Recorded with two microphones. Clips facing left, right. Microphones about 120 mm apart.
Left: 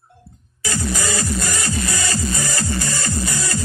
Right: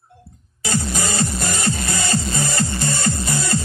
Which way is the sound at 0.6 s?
25° right (ahead or behind).